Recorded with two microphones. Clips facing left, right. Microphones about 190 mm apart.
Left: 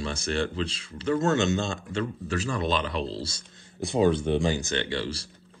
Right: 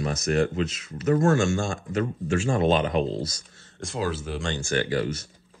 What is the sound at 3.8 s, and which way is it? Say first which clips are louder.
Speech: left 7 dB; centre (ahead or behind).